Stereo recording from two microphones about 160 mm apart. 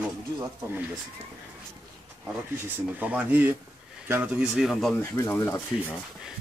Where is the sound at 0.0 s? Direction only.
10° right (ahead or behind).